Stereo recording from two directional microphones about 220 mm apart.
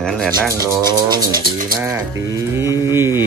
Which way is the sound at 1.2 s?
40° right (ahead or behind).